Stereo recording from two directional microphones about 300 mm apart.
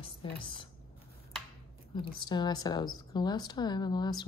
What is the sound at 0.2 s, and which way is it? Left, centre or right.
Speech, centre.